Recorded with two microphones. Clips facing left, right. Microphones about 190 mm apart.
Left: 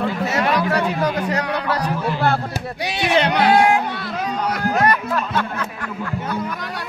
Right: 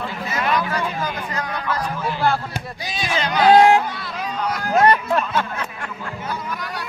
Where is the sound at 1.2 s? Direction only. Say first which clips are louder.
Left 5 dB; 70° left (ahead or behind).